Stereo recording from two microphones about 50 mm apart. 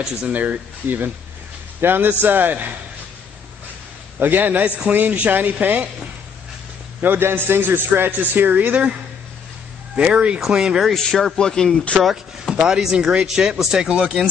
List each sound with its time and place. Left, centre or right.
0.2 s a man's voice: right
4.2 s a man's voice: right
7.0 s a man's voice: right
9.9 s speech: right
10.9 s speech: centre
12.0 s speech: centre
12.5 s speech: centre